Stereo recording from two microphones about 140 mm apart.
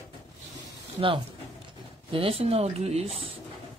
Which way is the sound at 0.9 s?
40° right (ahead or behind).